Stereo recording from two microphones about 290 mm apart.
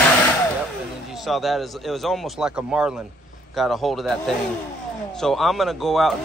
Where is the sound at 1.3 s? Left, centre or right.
Centre.